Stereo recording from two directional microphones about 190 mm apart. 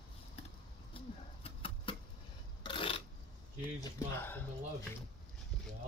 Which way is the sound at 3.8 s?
10° left (ahead or behind).